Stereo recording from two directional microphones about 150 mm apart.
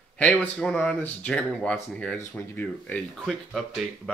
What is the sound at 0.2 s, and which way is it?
Speech, 10° left (ahead or behind).